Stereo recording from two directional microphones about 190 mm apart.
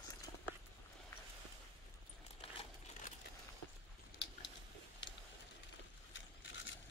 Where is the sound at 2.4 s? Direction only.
30° left (ahead or behind).